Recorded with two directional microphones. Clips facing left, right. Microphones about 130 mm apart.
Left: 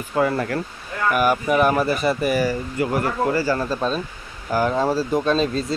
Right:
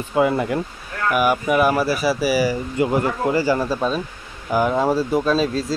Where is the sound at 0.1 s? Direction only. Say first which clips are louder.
Right 2 dB; 15° right (ahead or behind).